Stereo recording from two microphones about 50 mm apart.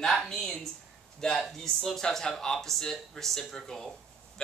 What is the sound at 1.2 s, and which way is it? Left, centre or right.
A man's voice, centre.